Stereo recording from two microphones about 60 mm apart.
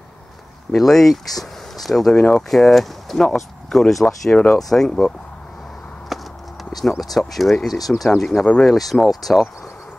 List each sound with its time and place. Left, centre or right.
0.7 s speech: centre
2.1 s speech: centre
2.5 s speech: centre
4.3 s speech: centre
4.6 s speech: centre
6.1 s clip-clop: centre
6.8 s speech: centre